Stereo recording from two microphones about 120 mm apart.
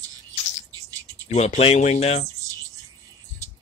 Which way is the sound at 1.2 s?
65° left (ahead or behind).